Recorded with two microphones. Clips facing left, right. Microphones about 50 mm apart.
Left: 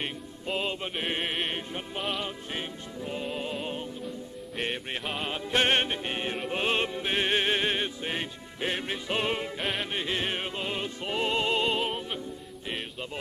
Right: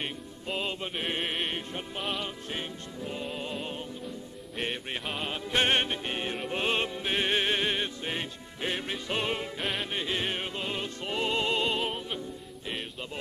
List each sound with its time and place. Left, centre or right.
0.0 s music: centre
5.5 s music: centre